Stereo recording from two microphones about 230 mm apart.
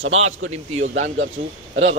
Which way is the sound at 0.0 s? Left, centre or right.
Right.